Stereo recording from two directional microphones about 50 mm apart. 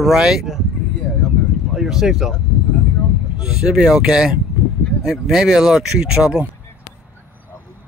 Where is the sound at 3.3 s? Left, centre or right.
Centre.